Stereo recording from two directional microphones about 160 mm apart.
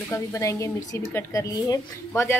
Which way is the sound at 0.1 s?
20° left (ahead or behind).